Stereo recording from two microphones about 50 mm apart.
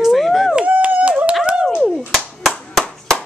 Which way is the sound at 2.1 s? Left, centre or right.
Centre.